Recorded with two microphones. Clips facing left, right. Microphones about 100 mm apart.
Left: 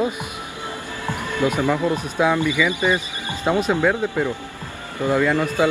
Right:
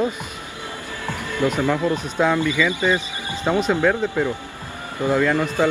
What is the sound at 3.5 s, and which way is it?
Speech, 5° left (ahead or behind).